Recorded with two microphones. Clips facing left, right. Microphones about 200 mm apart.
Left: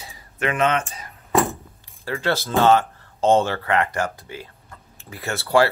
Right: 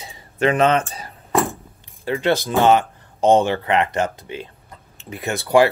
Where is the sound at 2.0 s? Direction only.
20° right (ahead or behind).